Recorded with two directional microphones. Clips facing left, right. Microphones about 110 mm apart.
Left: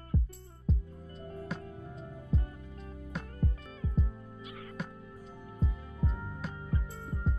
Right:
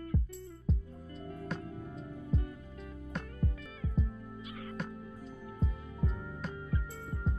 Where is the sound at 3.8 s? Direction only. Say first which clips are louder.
Left 1 dB; 35° left (ahead or behind).